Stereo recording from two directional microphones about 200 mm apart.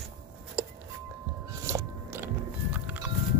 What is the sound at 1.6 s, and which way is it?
Gears, 10° right (ahead or behind).